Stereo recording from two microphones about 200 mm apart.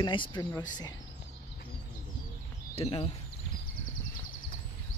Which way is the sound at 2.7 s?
30° left (ahead or behind).